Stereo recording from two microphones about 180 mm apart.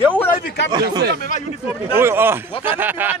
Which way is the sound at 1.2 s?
45° left (ahead or behind).